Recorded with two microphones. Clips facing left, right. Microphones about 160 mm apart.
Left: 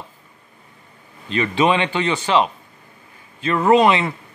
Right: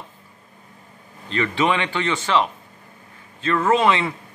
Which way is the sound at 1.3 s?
15° left (ahead or behind).